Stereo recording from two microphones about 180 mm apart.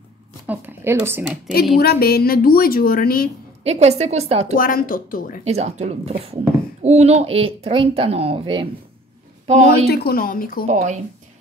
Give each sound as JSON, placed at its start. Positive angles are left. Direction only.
{"t": 0.5, "sound": "speech", "side_deg": -10}
{"t": 1.8, "sound": "a woman's voice", "side_deg": 60}
{"t": 3.6, "sound": "speech", "side_deg": -40}
{"t": 4.6, "sound": "speech", "side_deg": 50}
{"t": 5.4, "sound": "speech", "side_deg": -35}
{"t": 9.8, "sound": "speech", "side_deg": 55}
{"t": 10.7, "sound": "speech", "side_deg": -40}